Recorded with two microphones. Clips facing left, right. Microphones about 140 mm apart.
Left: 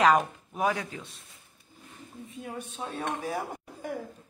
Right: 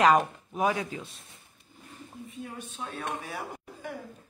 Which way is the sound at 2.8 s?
35° left (ahead or behind).